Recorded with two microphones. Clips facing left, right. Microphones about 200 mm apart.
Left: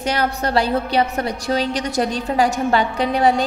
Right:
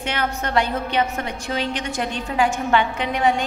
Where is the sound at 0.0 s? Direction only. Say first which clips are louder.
Left 4 dB; 35° left (ahead or behind).